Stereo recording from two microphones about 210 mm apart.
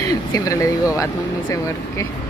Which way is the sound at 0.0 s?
15° left (ahead or behind).